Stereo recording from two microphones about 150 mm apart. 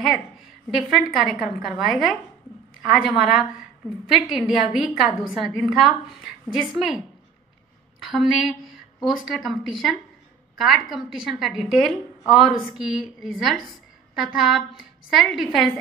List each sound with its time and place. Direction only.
0.7 s a woman's voice: centre (ahead or behind)
8.0 s a woman's voice: centre (ahead or behind)